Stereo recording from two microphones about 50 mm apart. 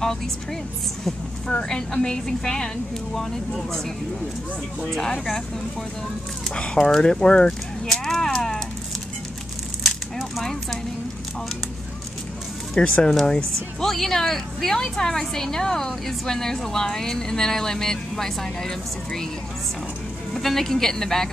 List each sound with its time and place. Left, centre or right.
1.5 s a woman's voice: centre
4.9 s a woman's voice: centre
6.5 s a woman's voice: centre
9.8 s a sound: centre
10.4 s a woman's voice: centre
12.8 s a woman's voice: centre
20.3 s a woman's voice: centre